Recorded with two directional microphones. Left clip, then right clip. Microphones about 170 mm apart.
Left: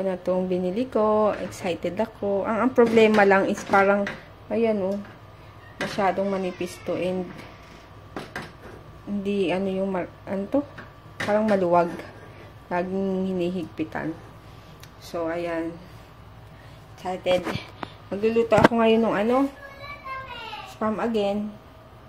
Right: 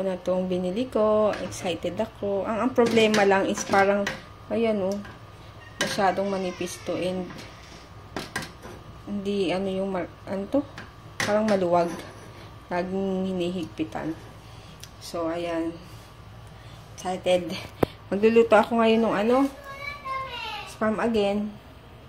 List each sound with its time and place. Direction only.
0.0 s speech: 15° left (ahead or behind)
5.9 s speech: 10° left (ahead or behind)
9.2 s a woman's voice: 15° left (ahead or behind)
15.0 s speech: 15° left (ahead or behind)
17.0 s a woman's voice: centre (ahead or behind)
18.7 s speech: 10° left (ahead or behind)
20.8 s a woman's voice: 5° left (ahead or behind)